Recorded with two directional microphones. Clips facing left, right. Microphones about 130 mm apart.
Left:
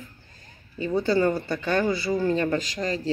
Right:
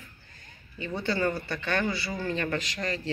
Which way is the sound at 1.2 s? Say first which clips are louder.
Left 5 dB; 25° left (ahead or behind).